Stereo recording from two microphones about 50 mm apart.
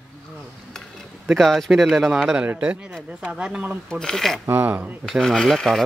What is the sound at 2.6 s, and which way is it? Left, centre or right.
Speech, right.